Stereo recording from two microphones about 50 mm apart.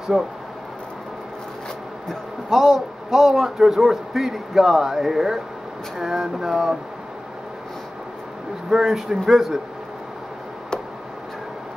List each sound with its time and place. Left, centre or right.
0.1 s speech: centre
2.0 s a man's voice: centre
8.6 s speech: centre